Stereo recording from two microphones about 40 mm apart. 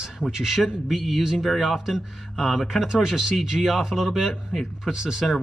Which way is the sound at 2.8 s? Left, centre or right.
Centre.